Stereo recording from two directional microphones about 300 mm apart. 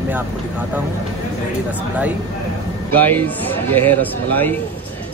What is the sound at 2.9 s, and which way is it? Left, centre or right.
Speech, centre.